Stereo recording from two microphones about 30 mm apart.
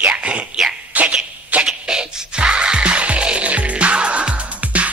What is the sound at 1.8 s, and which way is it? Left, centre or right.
Music, right.